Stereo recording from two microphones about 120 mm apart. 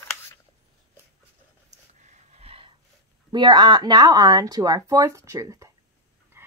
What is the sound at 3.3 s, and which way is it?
Speech, 35° right (ahead or behind).